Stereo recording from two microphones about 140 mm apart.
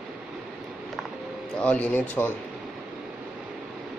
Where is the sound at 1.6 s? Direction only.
10° left (ahead or behind).